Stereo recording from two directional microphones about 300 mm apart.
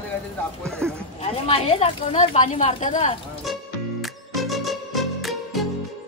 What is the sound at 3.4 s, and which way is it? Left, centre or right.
Music, centre.